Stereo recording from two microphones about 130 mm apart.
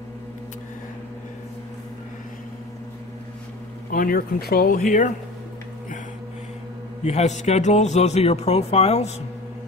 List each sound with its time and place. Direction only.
3.9 s speech: 90° left
7.0 s a man's voice: 60° left (ahead or behind)